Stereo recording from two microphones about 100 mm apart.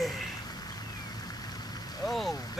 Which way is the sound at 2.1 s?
Centre (ahead or behind).